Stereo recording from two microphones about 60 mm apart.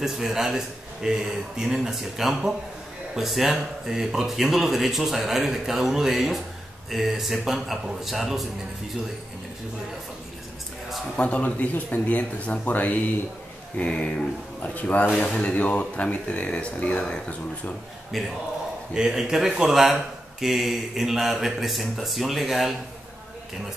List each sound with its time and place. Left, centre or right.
0.0 s speech: centre
11.1 s speech: left
15.2 s speech: centre
18.1 s speech: centre